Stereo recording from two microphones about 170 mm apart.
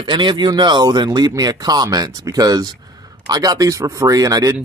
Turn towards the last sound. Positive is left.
turn(degrees=-20)  # may be behind; listen again after turning